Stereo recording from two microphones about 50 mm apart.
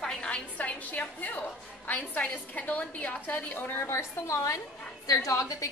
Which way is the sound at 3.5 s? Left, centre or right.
Left.